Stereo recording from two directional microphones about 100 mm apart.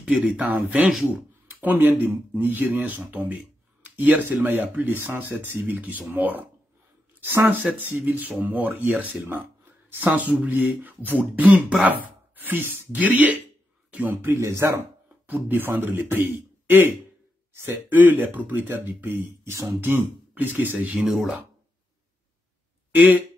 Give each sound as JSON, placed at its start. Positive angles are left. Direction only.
{"t": 0.0, "sound": "speech", "side_deg": -10}
{"t": 20.8, "sound": "speech", "side_deg": -10}
{"t": 22.9, "sound": "speech", "side_deg": -15}